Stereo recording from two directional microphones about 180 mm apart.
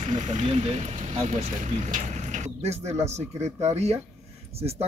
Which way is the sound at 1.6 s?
40° right (ahead or behind).